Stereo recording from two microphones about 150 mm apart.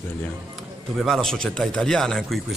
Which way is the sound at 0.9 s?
Centre (ahead or behind).